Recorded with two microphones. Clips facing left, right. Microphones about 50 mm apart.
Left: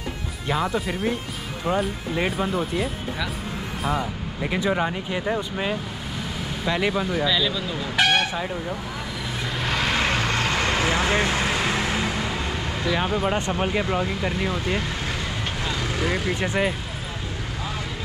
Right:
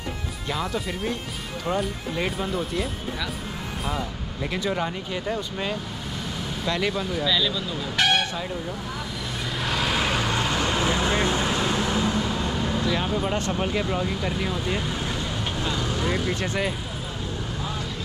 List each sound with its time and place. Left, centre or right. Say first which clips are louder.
0.5 s speech: left 4 dB; centre
9.6 s vehicle: left 1 dB; centre
10.5 s vehicle: left 1 dB; left
13.0 s speech: left 2 dB; centre